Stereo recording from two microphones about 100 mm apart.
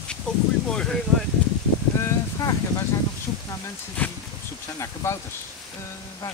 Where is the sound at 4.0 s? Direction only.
15° left (ahead or behind).